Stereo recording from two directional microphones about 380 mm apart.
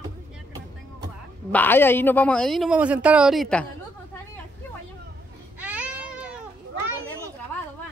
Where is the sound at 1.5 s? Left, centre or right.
Centre.